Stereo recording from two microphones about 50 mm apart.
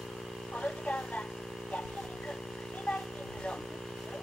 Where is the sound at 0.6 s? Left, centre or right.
Left.